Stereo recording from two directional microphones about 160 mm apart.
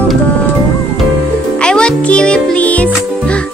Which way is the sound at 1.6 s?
5° left (ahead or behind).